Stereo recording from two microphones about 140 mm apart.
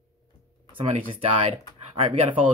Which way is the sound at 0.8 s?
45° right (ahead or behind).